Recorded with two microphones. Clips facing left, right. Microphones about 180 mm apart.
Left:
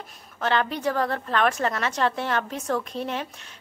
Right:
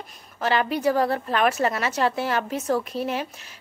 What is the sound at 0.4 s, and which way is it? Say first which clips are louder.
A woman's voice: right 2 dB; 5° right (ahead or behind).